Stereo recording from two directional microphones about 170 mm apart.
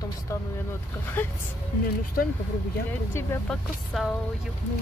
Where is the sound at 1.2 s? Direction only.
10° left (ahead or behind).